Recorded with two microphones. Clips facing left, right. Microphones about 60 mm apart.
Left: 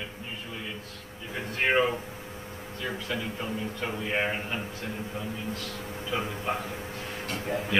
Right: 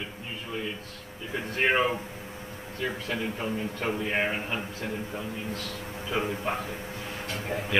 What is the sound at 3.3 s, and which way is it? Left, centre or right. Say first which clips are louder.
Speech: right 2 dB; right.